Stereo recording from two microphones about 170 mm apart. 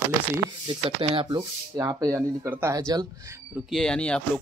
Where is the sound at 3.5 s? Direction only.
Centre (ahead or behind).